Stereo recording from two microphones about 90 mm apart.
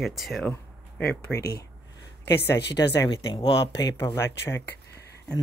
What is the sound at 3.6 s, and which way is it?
Speech, 40° left (ahead or behind).